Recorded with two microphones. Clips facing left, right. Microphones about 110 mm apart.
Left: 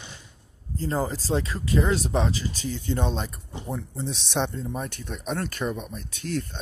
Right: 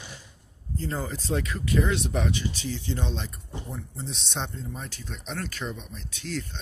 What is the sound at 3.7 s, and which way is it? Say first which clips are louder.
Speech: left 8 dB; 70° left (ahead or behind).